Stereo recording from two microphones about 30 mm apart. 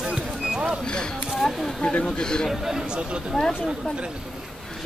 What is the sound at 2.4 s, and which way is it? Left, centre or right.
Speech, centre.